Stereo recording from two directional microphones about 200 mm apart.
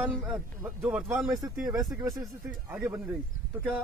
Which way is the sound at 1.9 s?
15° right (ahead or behind).